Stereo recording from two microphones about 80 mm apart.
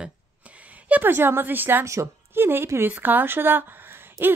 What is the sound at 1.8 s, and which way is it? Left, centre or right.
Speech, right.